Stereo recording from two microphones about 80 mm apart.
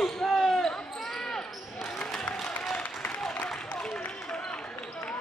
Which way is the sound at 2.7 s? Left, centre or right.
Centre.